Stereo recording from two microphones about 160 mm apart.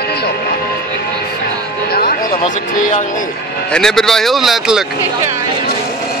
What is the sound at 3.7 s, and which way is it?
A man's voice, 5° left (ahead or behind).